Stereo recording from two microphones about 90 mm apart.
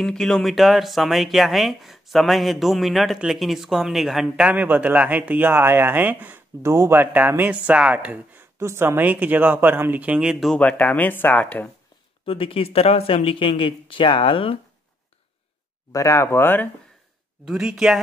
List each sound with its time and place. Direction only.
0.0 s speech: 5° left (ahead or behind)
4.6 s speech: 20° right (ahead or behind)
8.5 s speech: 30° right (ahead or behind)
10.5 s speech: 15° left (ahead or behind)
12.3 s speech: 80° left
15.9 s speech: 35° left (ahead or behind)
17.5 s speech: 5° right (ahead or behind)